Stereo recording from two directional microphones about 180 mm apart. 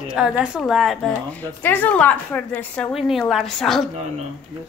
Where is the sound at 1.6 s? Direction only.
10° left (ahead or behind).